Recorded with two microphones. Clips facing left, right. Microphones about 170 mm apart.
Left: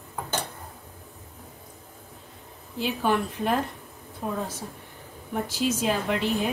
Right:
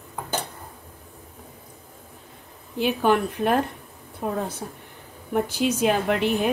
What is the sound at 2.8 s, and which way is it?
A woman's voice, 60° right (ahead or behind).